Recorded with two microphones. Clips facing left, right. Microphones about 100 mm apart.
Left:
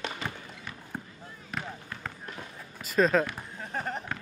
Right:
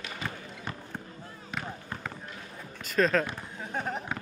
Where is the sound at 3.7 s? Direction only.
Centre (ahead or behind).